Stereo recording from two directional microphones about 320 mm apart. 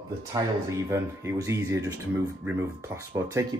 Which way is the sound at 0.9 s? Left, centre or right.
Centre.